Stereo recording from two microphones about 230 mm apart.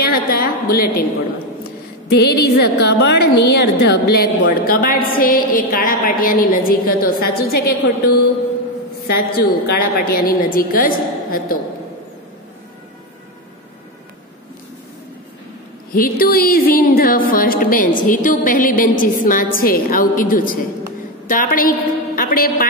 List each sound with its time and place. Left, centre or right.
0.0 s a woman's voice: left
2.0 s a woman's voice: left
9.0 s a woman's voice: left
15.9 s a woman's voice: left